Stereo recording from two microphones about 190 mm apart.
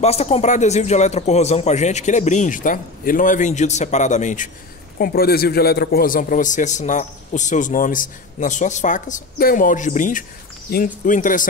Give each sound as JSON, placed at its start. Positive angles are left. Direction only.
{"t": 0.0, "sound": "speech", "side_deg": 35}
{"t": 4.9, "sound": "a man's voice", "side_deg": 55}